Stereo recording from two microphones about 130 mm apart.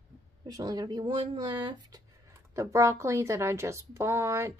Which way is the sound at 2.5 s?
25° right (ahead or behind).